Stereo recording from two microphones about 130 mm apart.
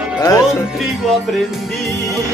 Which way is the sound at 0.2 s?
25° left (ahead or behind).